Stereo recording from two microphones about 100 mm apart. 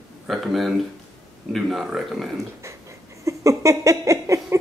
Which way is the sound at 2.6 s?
30° right (ahead or behind).